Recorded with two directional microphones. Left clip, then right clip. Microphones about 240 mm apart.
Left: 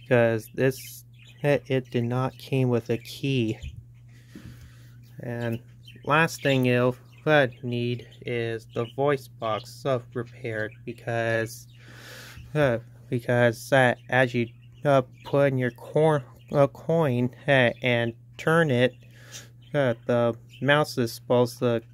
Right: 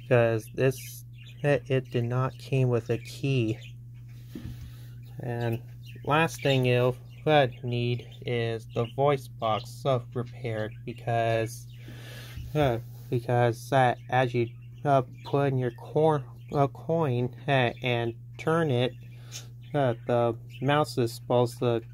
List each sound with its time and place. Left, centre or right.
0.1 s speech: left
5.1 s speech: left